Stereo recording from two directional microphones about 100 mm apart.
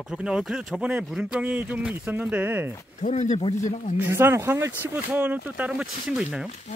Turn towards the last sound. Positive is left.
turn(degrees=-10)  # may be behind; listen again after turning